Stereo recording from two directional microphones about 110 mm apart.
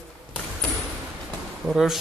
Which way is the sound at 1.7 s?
5° right (ahead or behind).